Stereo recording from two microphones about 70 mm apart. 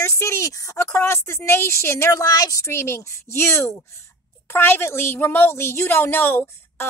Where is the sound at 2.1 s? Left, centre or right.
Left.